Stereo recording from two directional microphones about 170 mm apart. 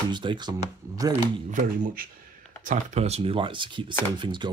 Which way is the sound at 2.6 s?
45° right (ahead or behind).